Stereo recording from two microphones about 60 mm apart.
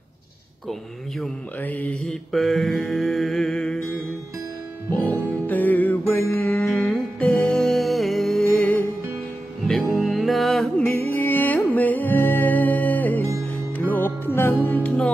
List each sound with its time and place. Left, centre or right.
1.6 s mantra: left
2.3 s mantra: centre
5.5 s music: left
7.2 s music: centre
7.6 s music: centre
8.5 s music: left
9.7 s music: centre
10.9 s music: left